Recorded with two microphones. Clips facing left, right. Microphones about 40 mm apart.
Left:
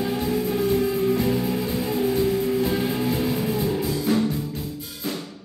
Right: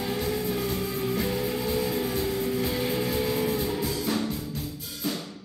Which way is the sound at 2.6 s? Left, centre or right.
Left.